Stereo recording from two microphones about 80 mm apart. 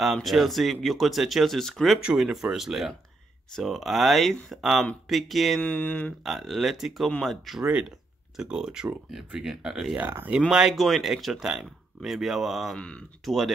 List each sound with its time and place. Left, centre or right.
0.0 s speech: centre
2.0 s speech: centre
5.6 s speech: centre
6.2 s speech: centre
9.9 s speech: right
10.5 s speech: centre
12.7 s speech: centre
13.2 s speech: centre